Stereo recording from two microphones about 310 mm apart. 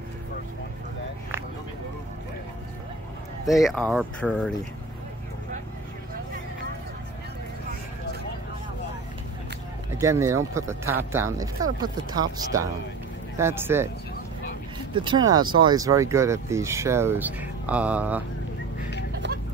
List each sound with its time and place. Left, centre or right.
3.6 s speech: centre
9.9 s speech: centre
15.0 s speech: centre
19.2 s vehicle: right